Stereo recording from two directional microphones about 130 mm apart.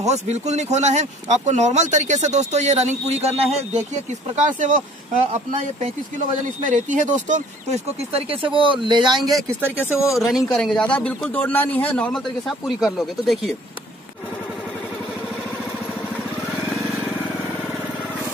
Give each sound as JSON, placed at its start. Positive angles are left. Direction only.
{"t": 0.0, "sound": "speech", "side_deg": -60}
{"t": 4.6, "sound": "speech", "side_deg": -75}
{"t": 5.3, "sound": "speech", "side_deg": -60}
{"t": 6.6, "sound": "speech", "side_deg": -75}
{"t": 9.7, "sound": "speech", "side_deg": 20}
{"t": 10.1, "sound": "a man's voice", "side_deg": 0}